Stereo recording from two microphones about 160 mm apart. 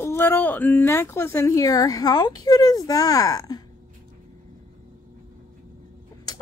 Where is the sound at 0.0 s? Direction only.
15° left (ahead or behind).